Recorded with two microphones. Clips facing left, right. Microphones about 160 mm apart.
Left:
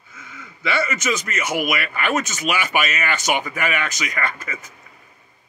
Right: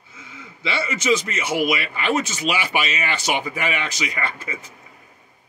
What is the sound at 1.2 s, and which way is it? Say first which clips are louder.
Speech: right 1 dB; 50° left (ahead or behind).